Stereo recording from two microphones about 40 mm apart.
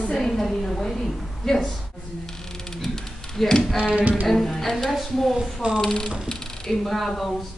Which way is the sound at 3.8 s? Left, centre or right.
Right.